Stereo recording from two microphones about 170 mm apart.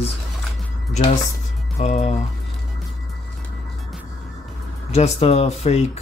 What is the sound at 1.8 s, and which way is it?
Speech, 40° left (ahead or behind).